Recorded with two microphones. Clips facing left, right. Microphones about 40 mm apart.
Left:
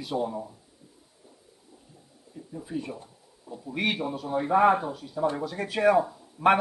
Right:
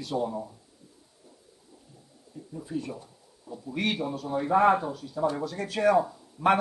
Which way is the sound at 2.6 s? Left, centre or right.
Centre.